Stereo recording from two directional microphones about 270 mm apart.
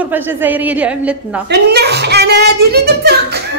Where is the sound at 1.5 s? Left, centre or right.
Right.